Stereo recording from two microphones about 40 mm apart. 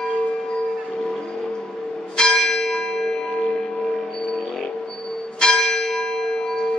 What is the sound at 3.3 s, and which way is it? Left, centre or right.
Tubular bells, left.